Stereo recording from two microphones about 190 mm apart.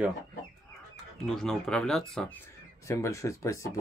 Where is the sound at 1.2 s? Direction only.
Centre (ahead or behind).